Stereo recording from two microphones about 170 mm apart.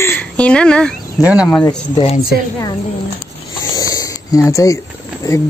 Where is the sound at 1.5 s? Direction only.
10° left (ahead or behind).